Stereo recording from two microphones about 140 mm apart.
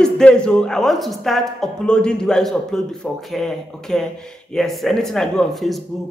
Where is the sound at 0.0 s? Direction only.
5° left (ahead or behind).